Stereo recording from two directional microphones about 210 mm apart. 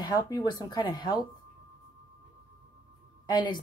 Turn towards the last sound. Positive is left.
turn(degrees=20)  # may be behind; listen again after turning